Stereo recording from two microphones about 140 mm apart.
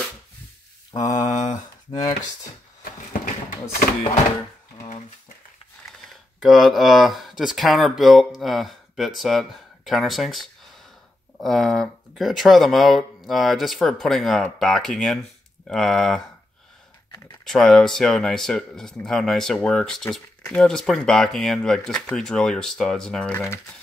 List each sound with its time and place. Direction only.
0.9 s mantra: 30° left (ahead or behind)
6.4 s speech: centre (ahead or behind)
17.5 s speech: 5° left (ahead or behind)